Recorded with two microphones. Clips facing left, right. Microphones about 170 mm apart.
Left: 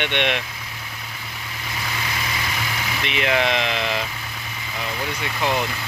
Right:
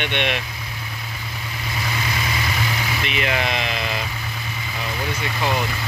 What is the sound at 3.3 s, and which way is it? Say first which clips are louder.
Speech: left 5 dB; 10° right (ahead or behind).